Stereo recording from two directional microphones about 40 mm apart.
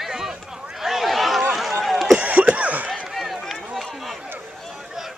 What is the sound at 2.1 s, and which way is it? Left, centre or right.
Cough, right.